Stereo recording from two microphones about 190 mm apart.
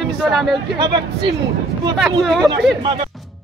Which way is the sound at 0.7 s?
25° right (ahead or behind).